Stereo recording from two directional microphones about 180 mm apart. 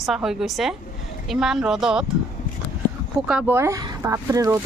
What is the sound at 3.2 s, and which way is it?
A woman's voice, 10° right (ahead or behind).